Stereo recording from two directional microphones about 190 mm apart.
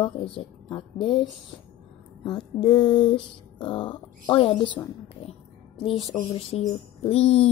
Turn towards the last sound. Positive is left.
turn(degrees=30)  # may be behind; listen again after turning